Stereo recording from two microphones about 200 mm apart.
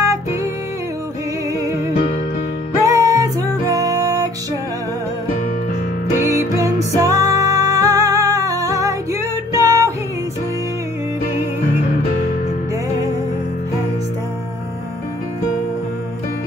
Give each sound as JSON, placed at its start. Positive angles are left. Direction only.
{"t": 2.8, "sound": "music", "side_deg": -15}
{"t": 6.3, "sound": "music", "side_deg": -15}